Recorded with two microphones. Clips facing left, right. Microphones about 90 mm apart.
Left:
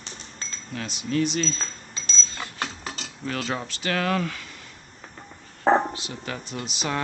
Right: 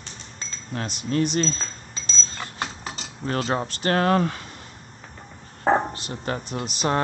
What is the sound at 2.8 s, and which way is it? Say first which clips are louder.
Cutlery: right 1 dB; 20° right (ahead or behind).